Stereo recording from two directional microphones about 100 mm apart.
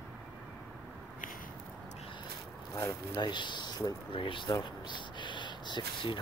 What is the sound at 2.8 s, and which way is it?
Speech, 40° left (ahead or behind).